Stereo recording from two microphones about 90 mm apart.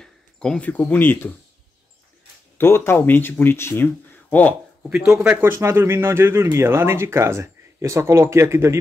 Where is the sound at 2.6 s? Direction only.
25° left (ahead or behind).